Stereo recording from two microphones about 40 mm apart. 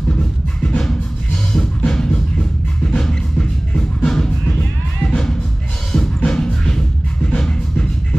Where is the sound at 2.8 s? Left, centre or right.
Centre.